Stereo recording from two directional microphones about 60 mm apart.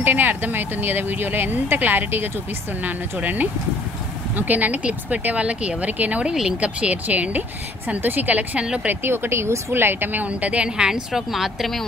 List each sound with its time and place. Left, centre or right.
0.0 s speech: right
9.0 s speech: right
10.2 s a woman's voice: right; by 11.7 s centre